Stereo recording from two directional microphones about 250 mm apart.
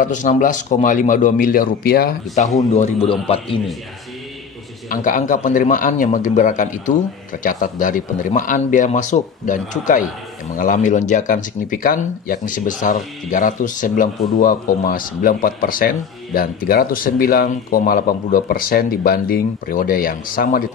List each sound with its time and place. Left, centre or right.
0.0 s speech: left
4.8 s speech: left